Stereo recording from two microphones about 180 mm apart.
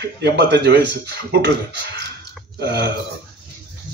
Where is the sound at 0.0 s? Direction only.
70° right (ahead or behind).